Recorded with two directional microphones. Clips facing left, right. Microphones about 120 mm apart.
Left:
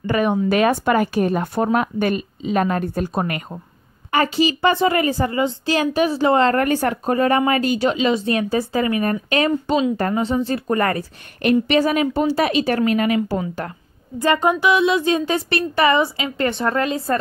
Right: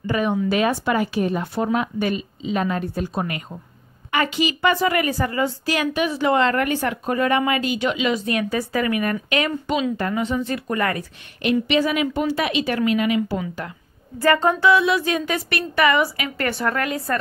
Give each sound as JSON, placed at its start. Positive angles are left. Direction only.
{"t": 0.0, "sound": "a woman's voice", "side_deg": 55}
{"t": 4.1, "sound": "a woman's voice", "side_deg": 35}
{"t": 14.1, "sound": "speech", "side_deg": 20}